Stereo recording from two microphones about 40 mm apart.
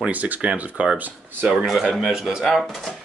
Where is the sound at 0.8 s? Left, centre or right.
Right.